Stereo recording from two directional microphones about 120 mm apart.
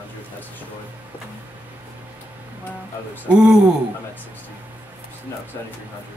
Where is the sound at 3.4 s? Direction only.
5° right (ahead or behind).